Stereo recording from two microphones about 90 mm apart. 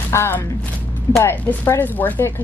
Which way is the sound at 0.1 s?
25° left (ahead or behind).